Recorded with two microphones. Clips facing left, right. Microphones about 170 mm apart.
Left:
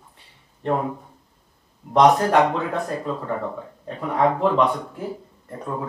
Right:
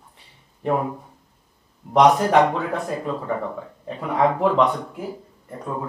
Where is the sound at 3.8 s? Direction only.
5° right (ahead or behind).